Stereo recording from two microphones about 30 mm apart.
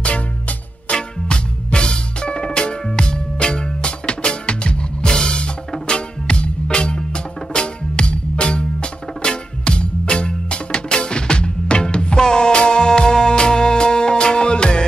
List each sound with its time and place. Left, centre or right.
0.0 s music: left
0.9 s music: left